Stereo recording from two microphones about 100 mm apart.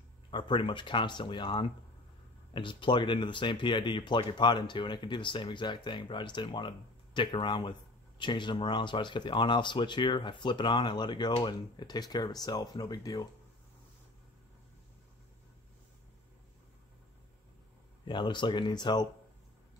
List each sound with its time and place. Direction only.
0.3 s speech: 50° left (ahead or behind)
18.0 s speech: 50° left (ahead or behind)